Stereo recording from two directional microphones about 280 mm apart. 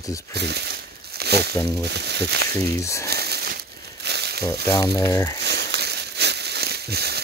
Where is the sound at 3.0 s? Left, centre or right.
Right.